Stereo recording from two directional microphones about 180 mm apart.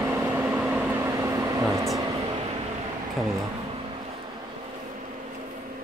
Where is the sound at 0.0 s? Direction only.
15° right (ahead or behind).